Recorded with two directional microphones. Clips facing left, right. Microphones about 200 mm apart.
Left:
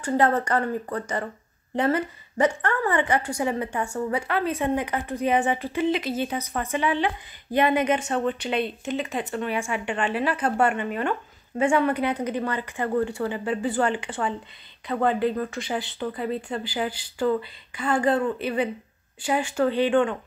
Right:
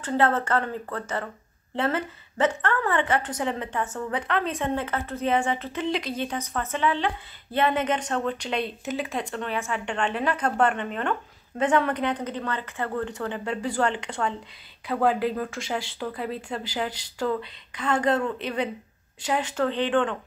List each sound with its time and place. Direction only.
0.0 s speech: 15° left (ahead or behind)